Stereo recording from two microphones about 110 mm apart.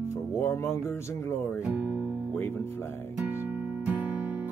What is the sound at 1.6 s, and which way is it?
Guitar, 15° right (ahead or behind).